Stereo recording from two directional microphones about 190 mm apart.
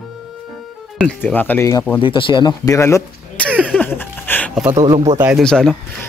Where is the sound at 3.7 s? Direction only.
10° left (ahead or behind).